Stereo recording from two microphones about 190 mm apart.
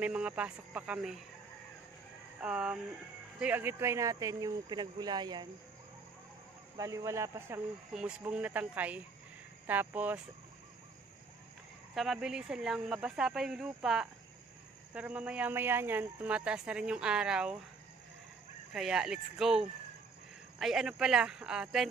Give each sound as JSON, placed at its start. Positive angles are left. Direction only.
{"t": 0.0, "sound": "speech", "side_deg": -5}
{"t": 2.4, "sound": "speech", "side_deg": -5}
{"t": 6.8, "sound": "speech", "side_deg": -15}
{"t": 11.9, "sound": "speech", "side_deg": 0}
{"t": 18.7, "sound": "speech", "side_deg": 0}